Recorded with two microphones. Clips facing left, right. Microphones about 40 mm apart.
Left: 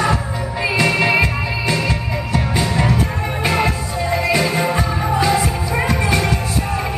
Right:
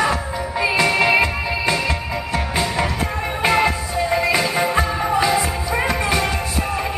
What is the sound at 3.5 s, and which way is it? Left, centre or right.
Music, centre.